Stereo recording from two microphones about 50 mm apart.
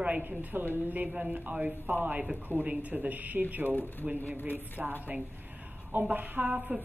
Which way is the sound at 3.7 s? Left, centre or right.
Left.